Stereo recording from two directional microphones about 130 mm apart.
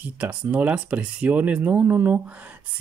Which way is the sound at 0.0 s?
10° right (ahead or behind).